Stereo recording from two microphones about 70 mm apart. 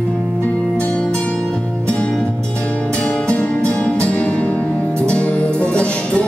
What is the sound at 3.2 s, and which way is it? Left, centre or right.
Music, centre.